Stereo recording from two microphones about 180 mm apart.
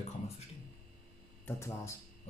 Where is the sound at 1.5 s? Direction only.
15° left (ahead or behind).